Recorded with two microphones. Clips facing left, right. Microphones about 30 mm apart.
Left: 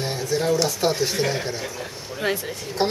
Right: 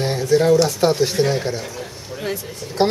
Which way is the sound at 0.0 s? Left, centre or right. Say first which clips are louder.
Right 7 dB; centre.